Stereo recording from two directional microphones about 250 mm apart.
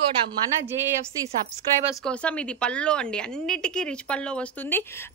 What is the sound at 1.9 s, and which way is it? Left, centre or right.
A woman's voice, centre.